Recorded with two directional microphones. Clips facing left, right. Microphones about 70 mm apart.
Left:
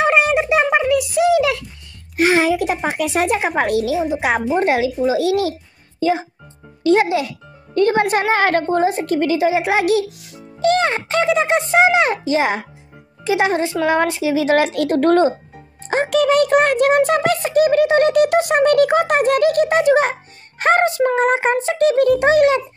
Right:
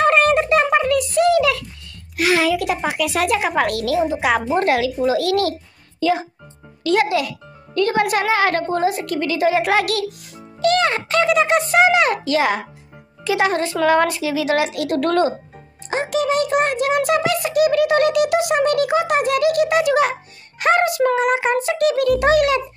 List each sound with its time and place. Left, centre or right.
0.0 s a sound: centre
2.1 s a woman's voice: left
15.9 s a child's voice: left